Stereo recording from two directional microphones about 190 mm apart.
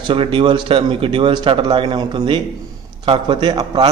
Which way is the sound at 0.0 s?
30° right (ahead or behind).